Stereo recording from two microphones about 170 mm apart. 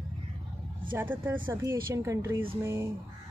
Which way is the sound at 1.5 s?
15° right (ahead or behind).